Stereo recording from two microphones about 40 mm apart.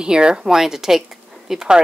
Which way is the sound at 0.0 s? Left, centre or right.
Right.